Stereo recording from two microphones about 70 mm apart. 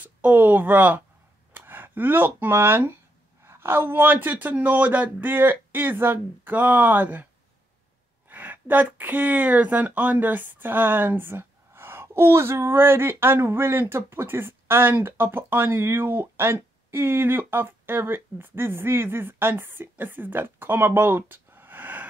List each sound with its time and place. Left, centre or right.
0.0 s speech: right
8.3 s speech: right